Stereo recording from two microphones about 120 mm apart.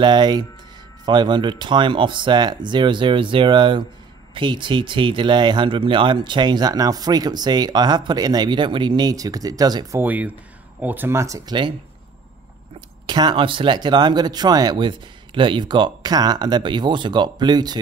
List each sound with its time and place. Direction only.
0.0 s speech: 35° right (ahead or behind)
9.9 s speech: 15° right (ahead or behind); by 11.7 s 40° right (ahead or behind)
13.0 s speech: 40° right (ahead or behind)